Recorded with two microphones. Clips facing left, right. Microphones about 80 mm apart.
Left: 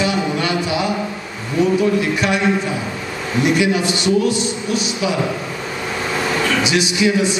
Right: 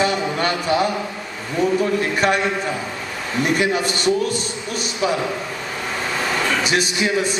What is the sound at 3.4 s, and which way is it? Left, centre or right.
A man's voice, right.